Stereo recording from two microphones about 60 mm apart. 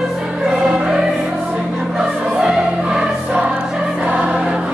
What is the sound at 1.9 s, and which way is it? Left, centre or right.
Choir, centre.